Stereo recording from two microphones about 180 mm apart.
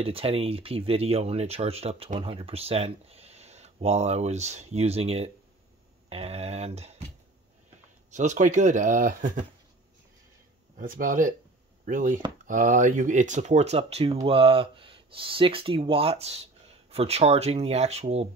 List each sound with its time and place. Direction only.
0.0 s speech: 30° right (ahead or behind)
8.1 s speech: 40° right (ahead or behind)
10.8 s speech: 50° right (ahead or behind)